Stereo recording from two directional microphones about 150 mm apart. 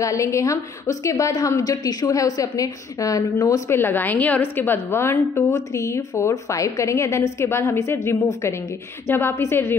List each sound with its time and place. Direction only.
0.0 s a woman's voice: 20° left (ahead or behind)